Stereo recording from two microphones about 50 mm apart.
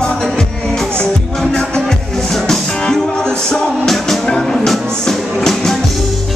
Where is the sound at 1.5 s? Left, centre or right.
Centre.